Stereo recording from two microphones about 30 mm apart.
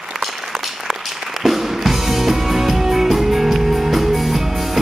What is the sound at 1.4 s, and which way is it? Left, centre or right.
Music, centre.